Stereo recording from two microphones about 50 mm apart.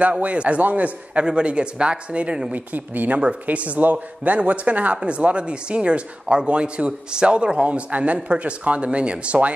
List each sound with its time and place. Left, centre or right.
0.2 s speech: right
2.5 s speech: right